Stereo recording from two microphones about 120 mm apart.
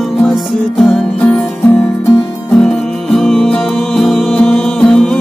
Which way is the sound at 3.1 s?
5° left (ahead or behind).